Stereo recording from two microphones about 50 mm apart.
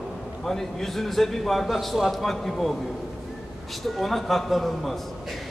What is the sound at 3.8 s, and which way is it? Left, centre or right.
A man's voice, centre.